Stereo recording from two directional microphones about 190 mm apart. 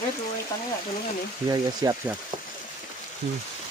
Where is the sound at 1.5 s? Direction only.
20° right (ahead or behind).